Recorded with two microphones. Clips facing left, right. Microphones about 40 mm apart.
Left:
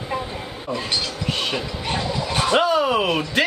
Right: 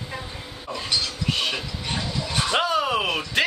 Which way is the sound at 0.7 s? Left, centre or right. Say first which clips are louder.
Left 2 dB; centre.